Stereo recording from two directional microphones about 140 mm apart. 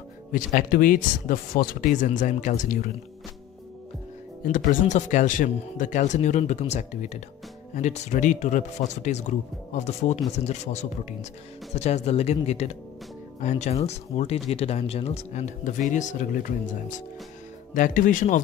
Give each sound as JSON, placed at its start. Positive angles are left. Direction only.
{"t": 0.3, "sound": "speech", "side_deg": 75}
{"t": 2.0, "sound": "speech", "side_deg": 60}
{"t": 4.5, "sound": "speech", "side_deg": 80}
{"t": 17.7, "sound": "speech", "side_deg": 70}